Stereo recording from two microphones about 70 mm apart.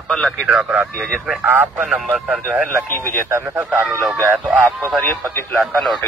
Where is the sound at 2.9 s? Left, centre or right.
Left.